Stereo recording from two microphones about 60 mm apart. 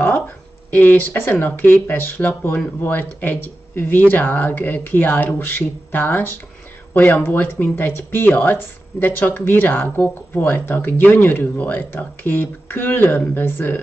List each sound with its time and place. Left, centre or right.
0.7 s speech: left